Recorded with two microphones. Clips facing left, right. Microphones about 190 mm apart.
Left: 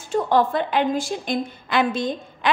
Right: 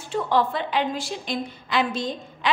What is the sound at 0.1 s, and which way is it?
A woman's voice, 50° left (ahead or behind).